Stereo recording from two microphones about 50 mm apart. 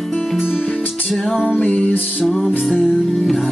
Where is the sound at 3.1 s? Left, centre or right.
Centre.